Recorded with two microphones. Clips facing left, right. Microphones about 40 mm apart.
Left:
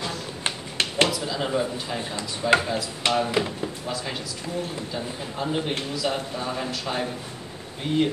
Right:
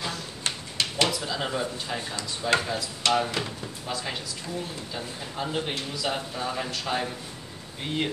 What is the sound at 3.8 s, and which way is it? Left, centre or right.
Speech, centre.